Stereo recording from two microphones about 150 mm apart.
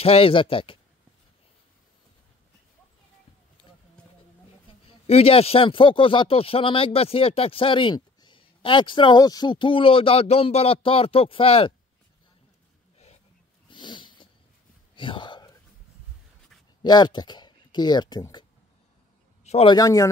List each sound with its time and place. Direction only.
0.0 s speech: 40° left (ahead or behind)
5.0 s speech: 40° left (ahead or behind)
13.7 s dog: 30° left (ahead or behind)
15.0 s whispering: 35° left (ahead or behind)
16.8 s speech: 30° left (ahead or behind)
19.4 s a sound: 45° left (ahead or behind)
19.7 s speech: 20° left (ahead or behind)